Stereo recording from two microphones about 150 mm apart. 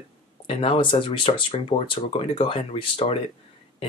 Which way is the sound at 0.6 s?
35° left (ahead or behind).